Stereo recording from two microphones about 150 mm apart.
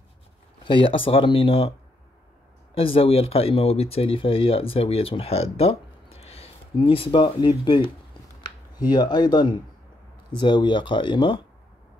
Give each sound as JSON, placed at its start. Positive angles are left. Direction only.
{"t": 0.7, "sound": "speech", "side_deg": 35}
{"t": 2.7, "sound": "speech", "side_deg": 40}
{"t": 8.9, "sound": "speech", "side_deg": 25}